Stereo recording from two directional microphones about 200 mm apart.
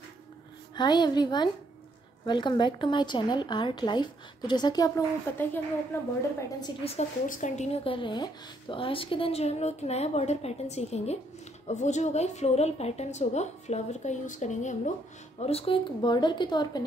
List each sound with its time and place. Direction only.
0.7 s a woman's voice: 20° left (ahead or behind)
6.6 s a woman's voice: 30° left (ahead or behind)